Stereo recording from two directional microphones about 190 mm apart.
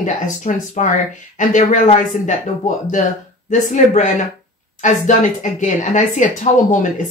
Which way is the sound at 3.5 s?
40° left (ahead or behind).